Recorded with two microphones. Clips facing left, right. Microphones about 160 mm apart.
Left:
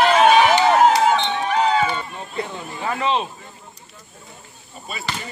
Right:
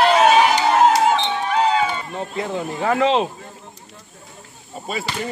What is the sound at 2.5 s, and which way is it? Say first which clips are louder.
Speech: right 7 dB; 75° right (ahead or behind).